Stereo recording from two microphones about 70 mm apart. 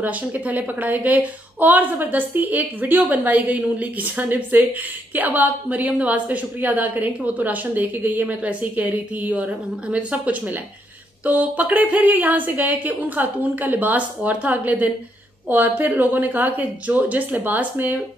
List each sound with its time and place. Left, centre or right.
0.0 s a woman's voice: right